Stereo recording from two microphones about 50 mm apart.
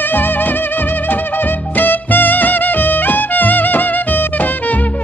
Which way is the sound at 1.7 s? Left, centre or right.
Left.